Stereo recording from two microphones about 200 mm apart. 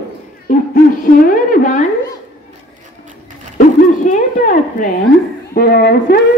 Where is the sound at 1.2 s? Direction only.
45° left (ahead or behind).